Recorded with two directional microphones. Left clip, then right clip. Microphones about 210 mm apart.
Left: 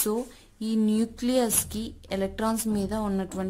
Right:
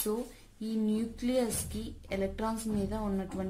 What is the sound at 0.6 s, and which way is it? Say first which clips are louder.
A woman's voice: left 7 dB; 40° left (ahead or behind).